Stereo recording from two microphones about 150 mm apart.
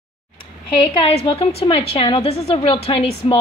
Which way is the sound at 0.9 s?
35° left (ahead or behind).